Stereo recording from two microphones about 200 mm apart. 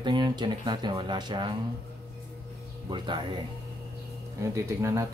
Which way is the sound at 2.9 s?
20° right (ahead or behind).